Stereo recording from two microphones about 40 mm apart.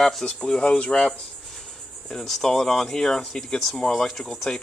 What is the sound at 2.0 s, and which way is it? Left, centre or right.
Speech, centre.